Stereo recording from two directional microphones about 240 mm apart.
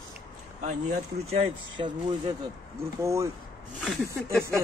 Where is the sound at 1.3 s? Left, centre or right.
Right.